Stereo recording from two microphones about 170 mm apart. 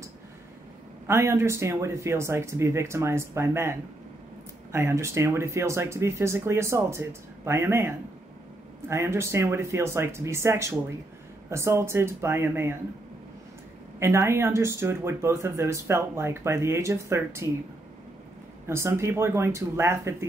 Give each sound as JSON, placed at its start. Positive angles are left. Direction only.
{"t": 1.0, "sound": "speech", "side_deg": -15}
{"t": 4.7, "sound": "speech", "side_deg": -15}
{"t": 13.9, "sound": "speech", "side_deg": -15}
{"t": 18.7, "sound": "speech", "side_deg": -15}